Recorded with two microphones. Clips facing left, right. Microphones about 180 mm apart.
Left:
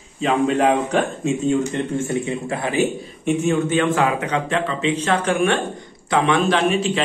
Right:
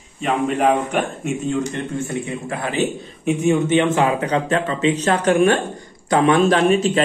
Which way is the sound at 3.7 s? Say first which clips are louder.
Right 2 dB; 25° right (ahead or behind).